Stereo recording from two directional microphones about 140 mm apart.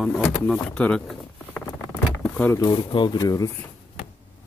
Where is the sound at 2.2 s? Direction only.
10° left (ahead or behind).